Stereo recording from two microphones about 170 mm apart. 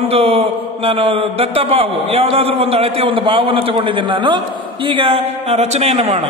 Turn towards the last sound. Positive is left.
turn(degrees=-35)  # may be behind; listen again after turning